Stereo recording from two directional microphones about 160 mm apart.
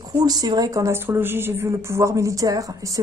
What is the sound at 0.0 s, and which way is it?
Speech, 25° right (ahead or behind).